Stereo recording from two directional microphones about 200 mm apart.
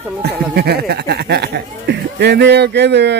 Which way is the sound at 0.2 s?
55° right (ahead or behind).